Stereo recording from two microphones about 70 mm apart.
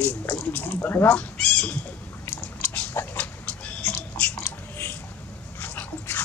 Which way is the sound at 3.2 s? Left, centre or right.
Centre.